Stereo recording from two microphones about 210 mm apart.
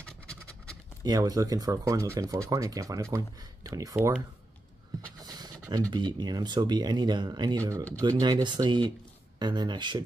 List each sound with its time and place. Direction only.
0.0 s scratch: 5° left (ahead or behind)
1.0 s speech: 20° right (ahead or behind)
5.2 s pant: 20° right (ahead or behind)
5.9 s speech: 20° right (ahead or behind)